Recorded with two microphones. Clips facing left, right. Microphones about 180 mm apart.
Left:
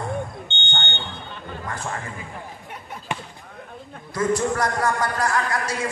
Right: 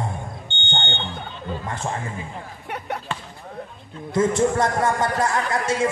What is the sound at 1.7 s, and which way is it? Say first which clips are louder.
Speech: right 1 dB; 25° right (ahead or behind).